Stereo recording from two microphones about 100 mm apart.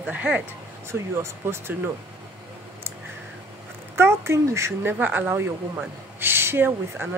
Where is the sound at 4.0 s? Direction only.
25° right (ahead or behind).